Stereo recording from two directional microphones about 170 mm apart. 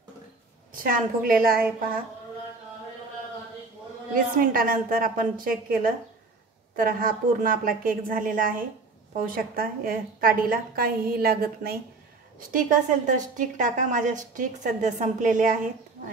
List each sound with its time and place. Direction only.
0.7 s a woman's voice: 55° right (ahead or behind)
4.1 s a woman's voice: 55° right (ahead or behind)
12.4 s a woman's voice: 50° right (ahead or behind)